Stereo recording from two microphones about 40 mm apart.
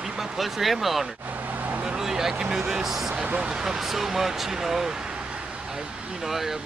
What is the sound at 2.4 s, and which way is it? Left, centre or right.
Speech, centre.